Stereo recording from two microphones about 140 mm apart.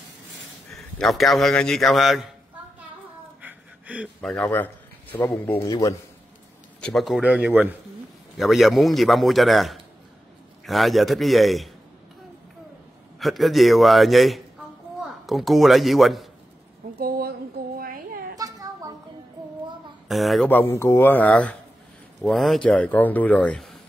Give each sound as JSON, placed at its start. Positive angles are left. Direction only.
{"t": 0.7, "sound": "a man's voice", "side_deg": 0}
{"t": 3.4, "sound": "a sound", "side_deg": -10}
{"t": 4.2, "sound": "speech", "side_deg": 10}
{"t": 5.7, "sound": "speech", "side_deg": 25}
{"t": 6.8, "sound": "a man's voice", "side_deg": 0}
{"t": 13.2, "sound": "a man's voice", "side_deg": 0}
{"t": 17.0, "sound": "a sound", "side_deg": -90}
{"t": 20.1, "sound": "speech", "side_deg": 0}
{"t": 20.4, "sound": "speech", "side_deg": 15}